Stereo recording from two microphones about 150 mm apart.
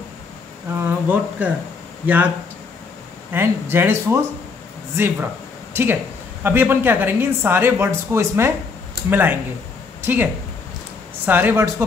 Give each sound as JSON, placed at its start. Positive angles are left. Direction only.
{"t": 0.7, "sound": "a sound", "side_deg": -15}
{"t": 2.0, "sound": "speech", "side_deg": -10}
{"t": 3.3, "sound": "speech", "side_deg": -15}
{"t": 5.7, "sound": "speech", "side_deg": -15}